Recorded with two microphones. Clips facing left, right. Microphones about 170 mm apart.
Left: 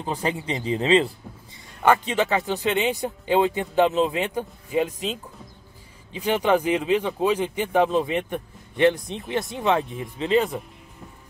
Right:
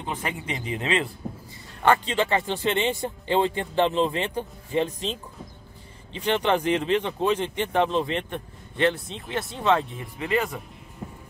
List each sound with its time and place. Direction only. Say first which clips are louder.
0.0 s speech: left 5 dB; 35° left (ahead or behind)
1.8 s speech: left 2 dB; 10° left (ahead or behind)
6.1 s speech: left 2 dB; 5° left (ahead or behind); by 10.6 s 20° left (ahead or behind)